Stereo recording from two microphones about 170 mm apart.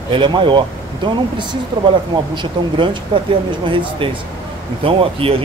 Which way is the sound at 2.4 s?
30° right (ahead or behind).